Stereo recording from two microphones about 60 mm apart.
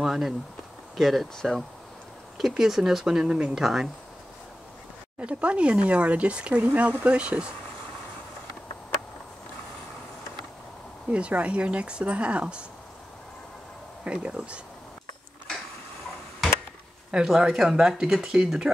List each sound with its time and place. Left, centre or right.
0.0 s speech: centre
5.2 s speech: right
11.1 s speech: right
14.0 s speech: centre
17.1 s speech: centre